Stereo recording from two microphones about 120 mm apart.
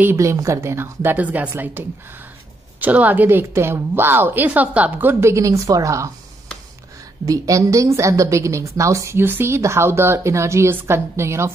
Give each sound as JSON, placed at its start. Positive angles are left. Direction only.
{"t": 0.0, "sound": "a woman's voice", "side_deg": -20}
{"t": 7.2, "sound": "a woman's voice", "side_deg": -30}